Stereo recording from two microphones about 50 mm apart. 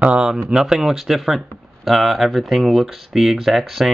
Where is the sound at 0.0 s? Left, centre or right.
Right.